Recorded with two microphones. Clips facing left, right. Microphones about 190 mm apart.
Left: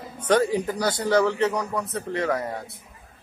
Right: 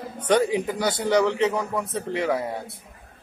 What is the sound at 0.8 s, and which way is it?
Speech, 25° right (ahead or behind).